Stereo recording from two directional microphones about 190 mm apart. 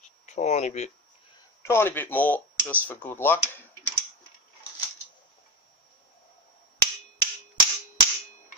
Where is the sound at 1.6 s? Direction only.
10° left (ahead or behind).